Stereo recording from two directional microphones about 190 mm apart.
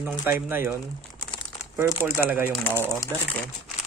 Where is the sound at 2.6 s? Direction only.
10° left (ahead or behind).